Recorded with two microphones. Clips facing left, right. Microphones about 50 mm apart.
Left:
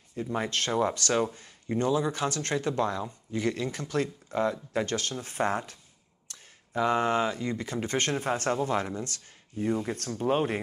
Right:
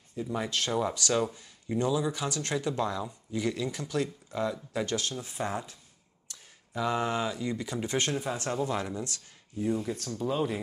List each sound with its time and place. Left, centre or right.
0.2 s speech: left
6.7 s speech: left